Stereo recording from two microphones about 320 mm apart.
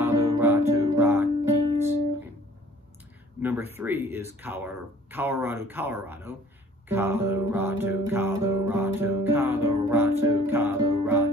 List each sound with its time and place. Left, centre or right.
0.0 s music: centre
3.4 s music: centre